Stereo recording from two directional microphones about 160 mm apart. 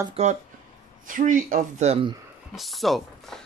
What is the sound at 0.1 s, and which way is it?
Speech, 45° right (ahead or behind).